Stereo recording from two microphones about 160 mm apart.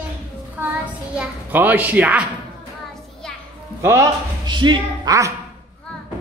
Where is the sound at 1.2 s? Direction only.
10° right (ahead or behind).